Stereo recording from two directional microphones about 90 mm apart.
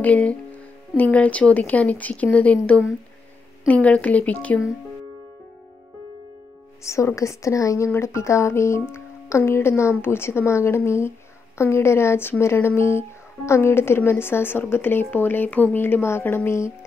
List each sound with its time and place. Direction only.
0.0 s speech: 15° left (ahead or behind)
6.8 s a woman's voice: 35° left (ahead or behind)